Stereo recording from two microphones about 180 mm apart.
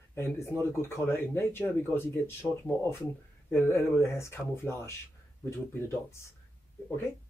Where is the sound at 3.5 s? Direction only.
10° left (ahead or behind).